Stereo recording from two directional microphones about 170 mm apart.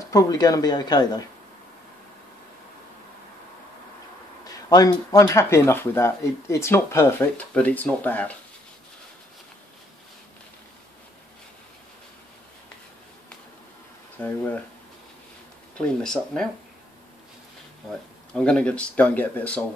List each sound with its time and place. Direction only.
0.1 s speech: 20° left (ahead or behind)
4.5 s speech: 20° left (ahead or behind)
14.2 s speech: 10° left (ahead or behind)
15.8 s speech: 5° left (ahead or behind)
18.3 s speech: 5° left (ahead or behind)